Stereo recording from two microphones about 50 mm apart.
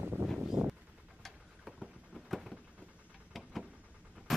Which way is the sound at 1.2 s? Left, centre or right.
Centre.